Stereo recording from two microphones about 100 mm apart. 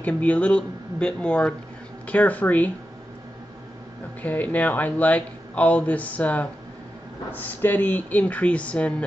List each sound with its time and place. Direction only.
0.0 s speech: 15° left (ahead or behind)
4.2 s speech: 15° left (ahead or behind)